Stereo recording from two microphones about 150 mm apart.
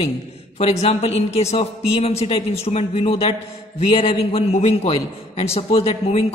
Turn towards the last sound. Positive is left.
turn(degrees=40)  # may be behind; listen again after turning